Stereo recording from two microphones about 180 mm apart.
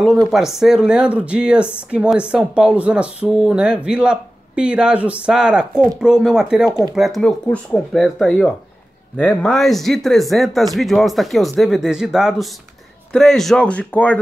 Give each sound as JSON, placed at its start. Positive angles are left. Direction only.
{"t": 0.0, "sound": "speech", "side_deg": 0}